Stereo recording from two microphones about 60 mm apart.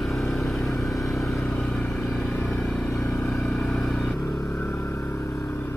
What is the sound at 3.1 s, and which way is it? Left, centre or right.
Vehicle, centre.